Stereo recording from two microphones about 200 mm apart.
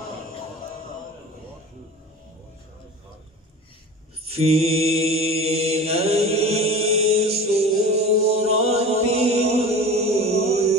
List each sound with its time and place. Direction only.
4.3 s mantra: 30° right (ahead or behind)